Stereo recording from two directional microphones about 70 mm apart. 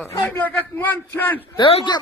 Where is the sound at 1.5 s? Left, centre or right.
Left.